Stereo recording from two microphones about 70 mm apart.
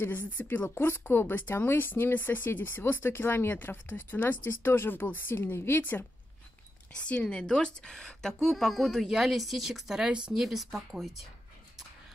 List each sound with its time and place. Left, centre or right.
0.0 s speech: left
6.9 s a woman's voice: centre